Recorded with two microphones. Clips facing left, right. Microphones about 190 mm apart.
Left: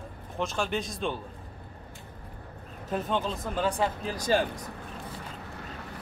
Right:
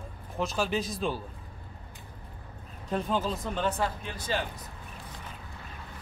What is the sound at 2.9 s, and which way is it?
Speech, centre (ahead or behind).